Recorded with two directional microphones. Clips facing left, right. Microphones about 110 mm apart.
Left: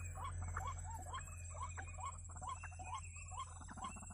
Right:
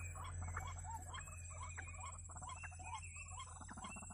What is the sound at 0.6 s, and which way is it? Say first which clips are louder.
Rodents: left 2 dB; 40° left (ahead or behind).